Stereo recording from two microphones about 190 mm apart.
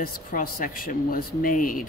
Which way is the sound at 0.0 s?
50° left (ahead or behind).